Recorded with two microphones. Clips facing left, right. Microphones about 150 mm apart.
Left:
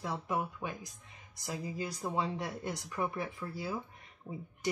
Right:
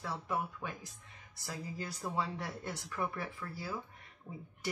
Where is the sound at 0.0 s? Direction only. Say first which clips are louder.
Left 2 dB; 15° left (ahead or behind).